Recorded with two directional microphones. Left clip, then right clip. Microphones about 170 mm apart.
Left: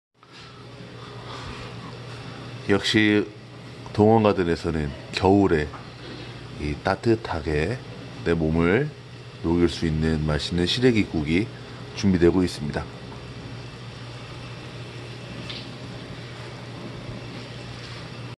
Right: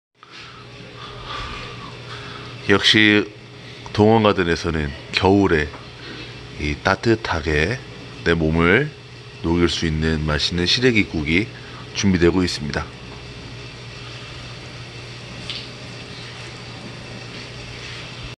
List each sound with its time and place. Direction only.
2.6 s speech: 10° left (ahead or behind)